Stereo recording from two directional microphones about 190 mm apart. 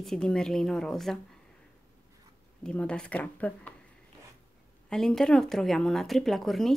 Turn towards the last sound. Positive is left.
turn(degrees=0)  # may be behind; listen again after turning